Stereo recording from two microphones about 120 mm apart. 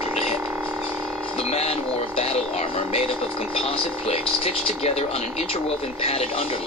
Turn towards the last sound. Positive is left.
turn(degrees=55)  # may be behind; listen again after turning